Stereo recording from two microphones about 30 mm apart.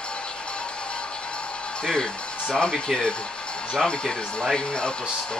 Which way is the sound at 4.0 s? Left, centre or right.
Left.